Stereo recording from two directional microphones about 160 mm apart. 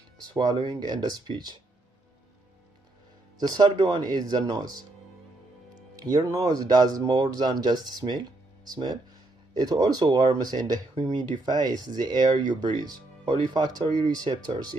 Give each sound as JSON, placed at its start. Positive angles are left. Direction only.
{"t": 0.3, "sound": "speech", "side_deg": -25}
{"t": 3.3, "sound": "speech", "side_deg": -25}
{"t": 6.0, "sound": "speech", "side_deg": -20}